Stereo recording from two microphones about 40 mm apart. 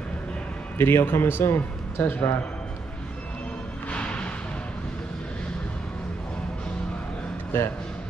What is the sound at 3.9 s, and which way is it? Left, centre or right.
Music, left.